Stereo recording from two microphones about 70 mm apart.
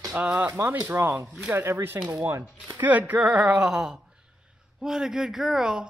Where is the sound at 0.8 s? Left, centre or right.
Right.